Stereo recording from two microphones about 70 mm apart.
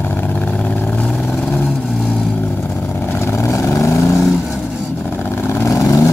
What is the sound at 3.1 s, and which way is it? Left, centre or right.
Vehicle, left.